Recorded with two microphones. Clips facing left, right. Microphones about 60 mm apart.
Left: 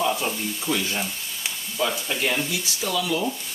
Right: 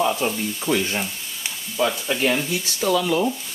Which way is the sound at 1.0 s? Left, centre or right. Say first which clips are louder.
Right 1 dB; centre.